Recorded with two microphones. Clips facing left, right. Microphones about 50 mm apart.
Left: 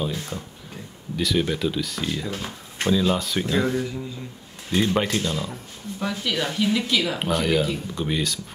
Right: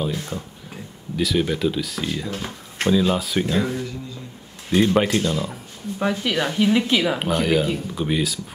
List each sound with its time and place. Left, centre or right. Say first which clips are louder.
0.0 s speech: right 2 dB; centre
5.9 s speech: right 4 dB; right
7.3 s speech: even; centre